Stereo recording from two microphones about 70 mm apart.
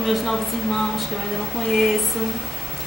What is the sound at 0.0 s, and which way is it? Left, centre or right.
Speech, centre.